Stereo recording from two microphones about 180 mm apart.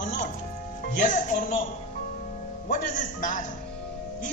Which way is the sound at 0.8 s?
45° left (ahead or behind).